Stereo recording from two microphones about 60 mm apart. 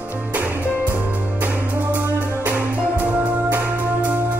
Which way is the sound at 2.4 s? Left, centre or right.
Right.